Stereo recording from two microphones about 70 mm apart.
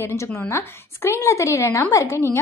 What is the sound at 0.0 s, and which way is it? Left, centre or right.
A woman's voice, left.